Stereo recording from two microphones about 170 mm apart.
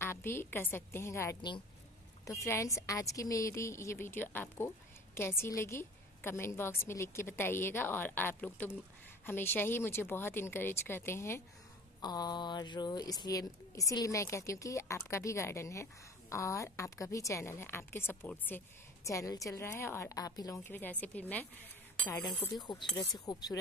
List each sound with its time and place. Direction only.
0.0 s speech: 15° left (ahead or behind)
22.5 s speech: 25° left (ahead or behind)